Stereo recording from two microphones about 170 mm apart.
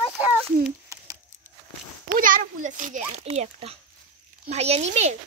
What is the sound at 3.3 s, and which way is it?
Speech, 35° right (ahead or behind).